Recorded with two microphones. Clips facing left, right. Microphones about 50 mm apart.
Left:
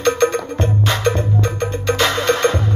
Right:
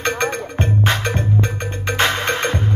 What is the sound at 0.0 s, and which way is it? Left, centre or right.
Music, right.